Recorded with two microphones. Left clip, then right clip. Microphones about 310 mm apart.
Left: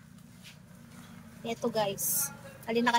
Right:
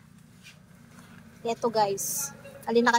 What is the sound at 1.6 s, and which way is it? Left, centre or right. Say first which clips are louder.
Speech: right 5 dB; right.